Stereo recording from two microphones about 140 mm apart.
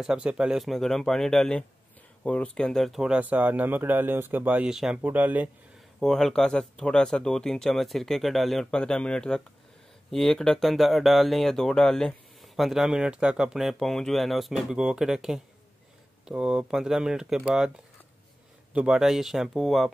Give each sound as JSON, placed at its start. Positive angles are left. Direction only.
{"t": 0.0, "sound": "speech", "side_deg": -5}
{"t": 5.9, "sound": "speech", "side_deg": 0}
{"t": 18.7, "sound": "speech", "side_deg": -5}